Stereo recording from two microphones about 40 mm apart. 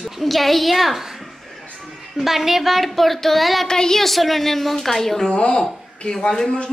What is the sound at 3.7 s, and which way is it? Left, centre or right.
A woman's voice, centre.